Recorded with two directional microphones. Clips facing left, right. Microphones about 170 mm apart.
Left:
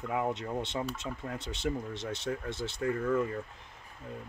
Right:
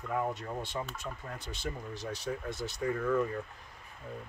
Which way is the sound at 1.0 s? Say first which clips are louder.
Left 4 dB; 25° left (ahead or behind).